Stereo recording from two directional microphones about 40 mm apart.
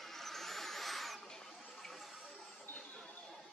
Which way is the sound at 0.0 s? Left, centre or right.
Centre.